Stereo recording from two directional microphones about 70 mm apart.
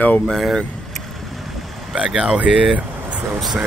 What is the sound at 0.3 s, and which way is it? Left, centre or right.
Speech, centre.